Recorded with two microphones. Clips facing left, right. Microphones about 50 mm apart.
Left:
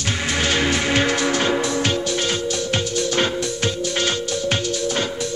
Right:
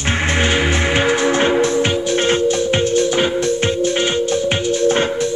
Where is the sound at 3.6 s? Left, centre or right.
Right.